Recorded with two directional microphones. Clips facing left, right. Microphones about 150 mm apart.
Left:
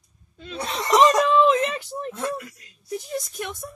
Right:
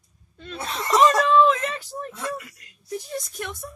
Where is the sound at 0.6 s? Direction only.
15° left (ahead or behind).